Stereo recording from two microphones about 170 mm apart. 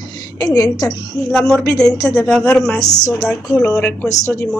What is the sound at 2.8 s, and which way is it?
Speech, 45° left (ahead or behind).